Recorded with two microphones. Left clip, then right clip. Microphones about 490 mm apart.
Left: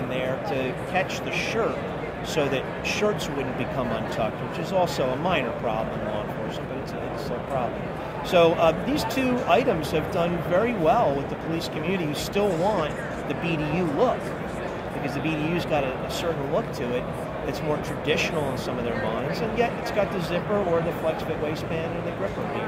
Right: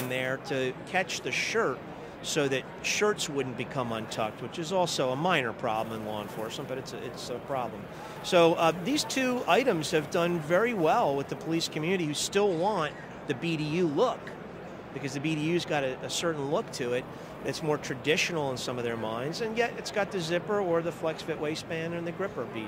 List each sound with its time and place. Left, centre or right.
0.1 s speech: right
4.7 s speech: right
8.3 s speech: right
15.2 s speech: right
18.0 s speech: right
19.5 s speech: right